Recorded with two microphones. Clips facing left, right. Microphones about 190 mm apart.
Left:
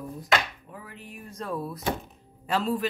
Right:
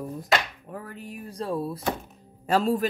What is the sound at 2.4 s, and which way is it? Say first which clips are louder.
Speech: right 4 dB; 45° right (ahead or behind).